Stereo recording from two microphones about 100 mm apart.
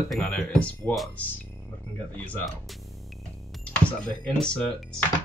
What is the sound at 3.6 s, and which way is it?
Speech, 10° left (ahead or behind).